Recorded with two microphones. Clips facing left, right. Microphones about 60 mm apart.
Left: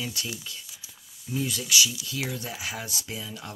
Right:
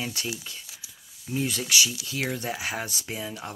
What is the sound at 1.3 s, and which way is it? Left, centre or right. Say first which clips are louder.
Speech: right 1 dB; right.